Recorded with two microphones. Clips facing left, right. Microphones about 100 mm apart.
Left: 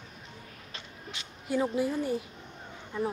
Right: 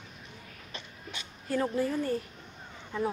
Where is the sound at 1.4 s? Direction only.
10° left (ahead or behind).